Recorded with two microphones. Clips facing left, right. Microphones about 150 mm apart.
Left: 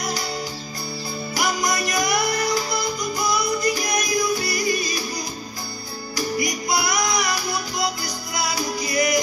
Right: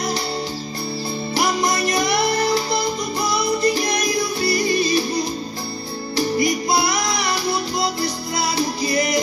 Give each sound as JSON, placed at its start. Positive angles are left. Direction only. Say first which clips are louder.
{"t": 1.3, "sound": "music", "louder": "right 3 dB", "side_deg": -30}